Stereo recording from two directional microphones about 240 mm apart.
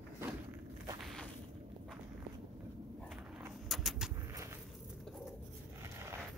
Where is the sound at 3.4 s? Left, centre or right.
Centre.